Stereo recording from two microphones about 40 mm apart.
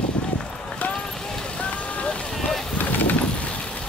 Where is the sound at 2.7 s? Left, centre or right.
Left.